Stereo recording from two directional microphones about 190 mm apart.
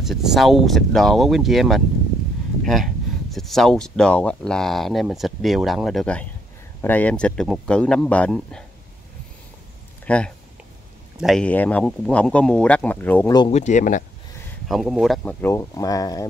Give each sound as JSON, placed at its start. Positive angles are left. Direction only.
{"t": 0.0, "sound": "speech", "side_deg": 0}
{"t": 10.0, "sound": "speech", "side_deg": 5}
{"t": 13.5, "sound": "speech", "side_deg": 40}
{"t": 14.7, "sound": "speech", "side_deg": 0}
{"t": 15.4, "sound": "speech", "side_deg": 15}